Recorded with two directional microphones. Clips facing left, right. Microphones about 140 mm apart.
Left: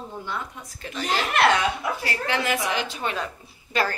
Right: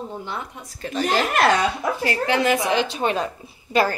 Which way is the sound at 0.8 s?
45° right (ahead or behind).